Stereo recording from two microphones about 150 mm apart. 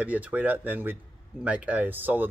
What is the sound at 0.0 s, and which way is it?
Speech, 10° right (ahead or behind).